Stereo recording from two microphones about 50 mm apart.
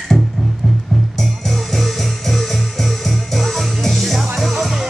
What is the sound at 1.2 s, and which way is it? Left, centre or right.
Music, centre.